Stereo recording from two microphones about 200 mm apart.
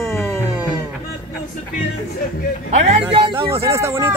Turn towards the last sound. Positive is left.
turn(degrees=-15)  # may be behind; listen again after turning